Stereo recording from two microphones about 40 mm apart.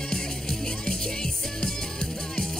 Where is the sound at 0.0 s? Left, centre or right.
Centre.